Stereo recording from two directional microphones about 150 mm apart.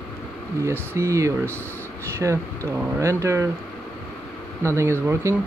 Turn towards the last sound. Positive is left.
turn(degrees=-20)  # may be behind; listen again after turning